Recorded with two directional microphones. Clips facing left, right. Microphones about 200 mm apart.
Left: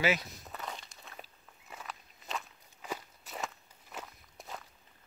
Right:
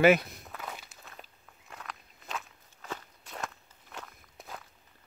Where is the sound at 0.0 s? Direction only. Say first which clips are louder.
Right 9 dB; 55° right (ahead or behind).